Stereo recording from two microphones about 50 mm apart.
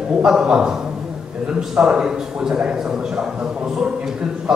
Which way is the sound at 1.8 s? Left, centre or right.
Centre.